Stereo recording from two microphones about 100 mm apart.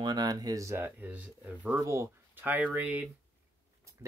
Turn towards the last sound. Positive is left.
turn(degrees=-15)  # may be behind; listen again after turning